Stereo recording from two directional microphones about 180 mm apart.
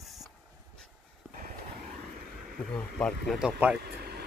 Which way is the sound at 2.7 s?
5° left (ahead or behind).